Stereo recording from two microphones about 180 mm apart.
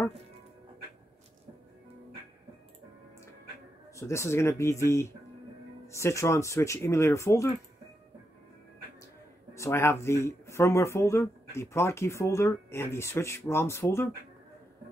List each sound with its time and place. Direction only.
3.9 s speech: 15° left (ahead or behind)
5.9 s speech: 15° left (ahead or behind)
9.5 s speech: 15° left (ahead or behind)